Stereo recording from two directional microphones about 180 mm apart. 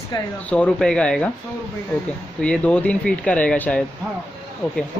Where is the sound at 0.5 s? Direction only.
5° left (ahead or behind).